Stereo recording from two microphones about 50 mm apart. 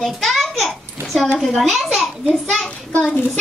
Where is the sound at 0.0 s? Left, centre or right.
Centre.